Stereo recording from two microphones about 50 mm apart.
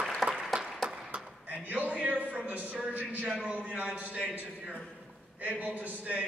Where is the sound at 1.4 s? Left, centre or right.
Right.